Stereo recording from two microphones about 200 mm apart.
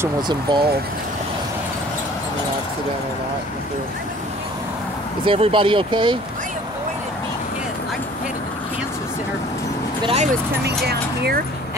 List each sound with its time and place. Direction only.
0.0 s speech: 20° right (ahead or behind)
5.2 s speech: 25° right (ahead or behind)
10.0 s speech: 35° right (ahead or behind)
10.9 s speech: 50° right (ahead or behind)